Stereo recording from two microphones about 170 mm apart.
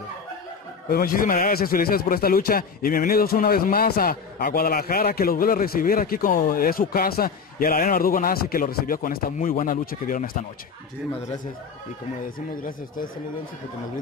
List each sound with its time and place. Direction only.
0.8 s a man's voice: 60° left (ahead or behind)